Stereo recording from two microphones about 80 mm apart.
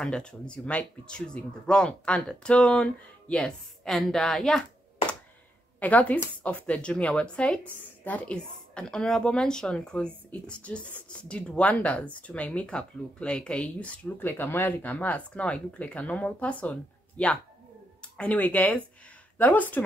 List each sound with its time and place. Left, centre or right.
0.0 s speech: centre
5.8 s speech: centre
14.3 s speech: left
18.0 s speech: centre